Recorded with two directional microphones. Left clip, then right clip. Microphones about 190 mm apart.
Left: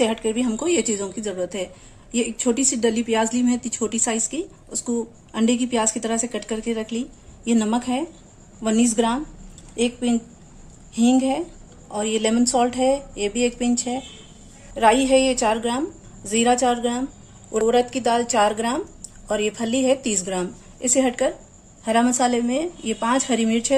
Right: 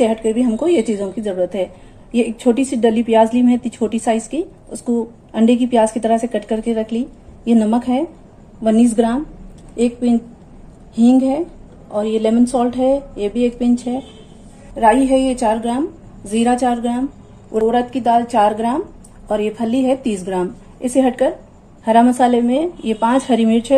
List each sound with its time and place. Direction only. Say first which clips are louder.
0.0 s a woman's voice: right 6 dB; 30° left (ahead or behind)
0.7 s a woman's voice: right 5 dB; 20° left (ahead or behind)